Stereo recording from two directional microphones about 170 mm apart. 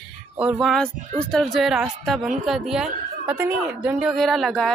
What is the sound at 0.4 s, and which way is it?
A child's voice, 5° right (ahead or behind).